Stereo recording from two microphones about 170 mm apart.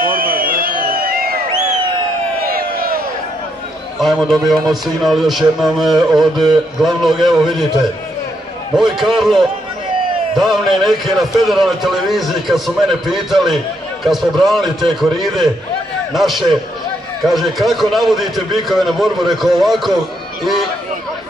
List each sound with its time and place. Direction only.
0.0 s a sound: 60° right (ahead or behind)
2.4 s crowd: 60° right (ahead or behind)
4.0 s a man's voice: centre (ahead or behind)